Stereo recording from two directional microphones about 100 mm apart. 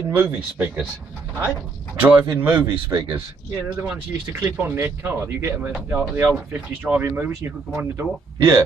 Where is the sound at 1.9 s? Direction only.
20° right (ahead or behind).